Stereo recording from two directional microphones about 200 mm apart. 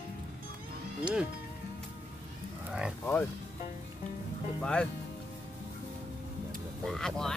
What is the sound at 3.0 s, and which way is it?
Speech, 10° left (ahead or behind).